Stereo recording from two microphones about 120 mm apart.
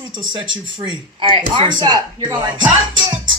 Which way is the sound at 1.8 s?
35° right (ahead or behind).